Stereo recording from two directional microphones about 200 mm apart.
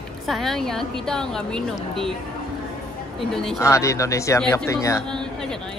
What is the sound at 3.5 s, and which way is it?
Speech, 15° left (ahead or behind).